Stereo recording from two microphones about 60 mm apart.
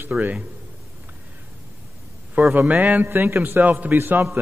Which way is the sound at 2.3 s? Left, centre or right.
Right.